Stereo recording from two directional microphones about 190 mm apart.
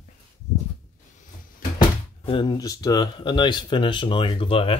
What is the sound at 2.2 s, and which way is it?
Speech, 25° left (ahead or behind).